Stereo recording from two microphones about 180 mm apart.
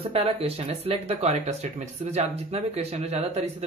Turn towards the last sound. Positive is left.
turn(degrees=-40)  # may be behind; listen again after turning